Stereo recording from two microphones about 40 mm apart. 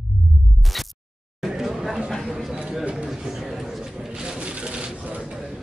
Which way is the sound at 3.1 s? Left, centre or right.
Centre.